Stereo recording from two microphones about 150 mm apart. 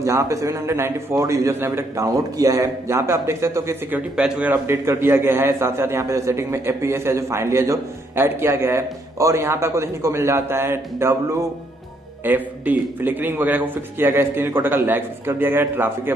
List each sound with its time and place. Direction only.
0.0 s a man's voice: 20° right (ahead or behind)
12.3 s a man's voice: 10° right (ahead or behind)